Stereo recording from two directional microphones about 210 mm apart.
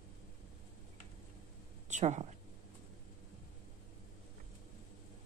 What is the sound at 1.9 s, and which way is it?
Speech, 35° right (ahead or behind).